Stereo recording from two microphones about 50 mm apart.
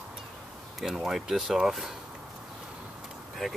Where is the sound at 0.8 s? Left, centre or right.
Centre.